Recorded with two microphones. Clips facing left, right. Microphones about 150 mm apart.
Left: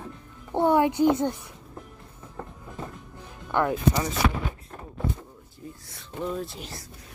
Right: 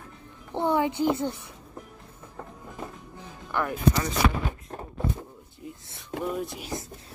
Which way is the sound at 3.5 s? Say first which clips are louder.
Left 4 dB; 20° left (ahead or behind).